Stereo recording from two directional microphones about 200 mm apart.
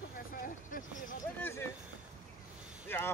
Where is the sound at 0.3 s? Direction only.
40° left (ahead or behind).